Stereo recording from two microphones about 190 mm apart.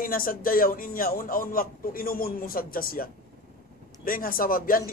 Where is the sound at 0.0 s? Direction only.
50° left (ahead or behind).